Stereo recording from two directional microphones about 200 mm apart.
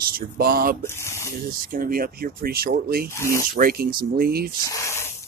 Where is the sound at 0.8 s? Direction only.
10° left (ahead or behind).